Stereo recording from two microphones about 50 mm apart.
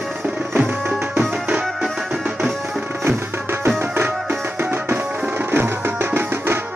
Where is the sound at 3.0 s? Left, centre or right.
Right.